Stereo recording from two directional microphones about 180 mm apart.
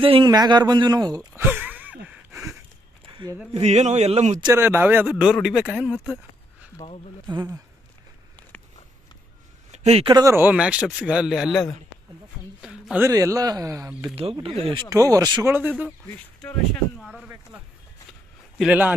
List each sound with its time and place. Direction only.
0.0 s speech: 25° right (ahead or behind); by 2.0 s 10° right (ahead or behind)
2.0 s a sound: 15° right (ahead or behind)
3.1 s a sound: 25° right (ahead or behind)
3.5 s a man's voice: 40° right (ahead or behind)
4.4 s speech: 15° right (ahead or behind); by 5.9 s centre (ahead or behind)
6.8 s speech: 30° left (ahead or behind)
9.7 s a sound: 40° right (ahead or behind)
10.0 s speech: 20° right (ahead or behind); by 11.6 s 5° right (ahead or behind)
12.6 s a sound: 5° right (ahead or behind)
13.1 s speech: 20° right (ahead or behind)
14.1 s a man's voice: 30° right (ahead or behind)
14.9 s speech: 20° right (ahead or behind)
17.0 s speech: centre (ahead or behind)
18.6 s speech: 10° right (ahead or behind)